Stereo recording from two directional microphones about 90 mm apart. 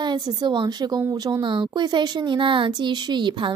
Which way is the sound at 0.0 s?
50° right (ahead or behind).